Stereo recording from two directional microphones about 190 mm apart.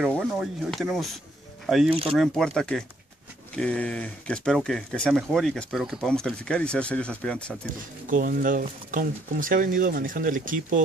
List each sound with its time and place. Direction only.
0.1 s speech: centre (ahead or behind)
8.1 s speech: 50° right (ahead or behind)